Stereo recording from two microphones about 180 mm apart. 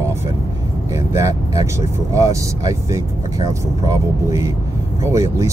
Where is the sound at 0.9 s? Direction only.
15° right (ahead or behind).